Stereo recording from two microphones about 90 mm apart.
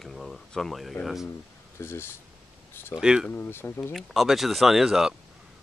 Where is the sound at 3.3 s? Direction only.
25° left (ahead or behind).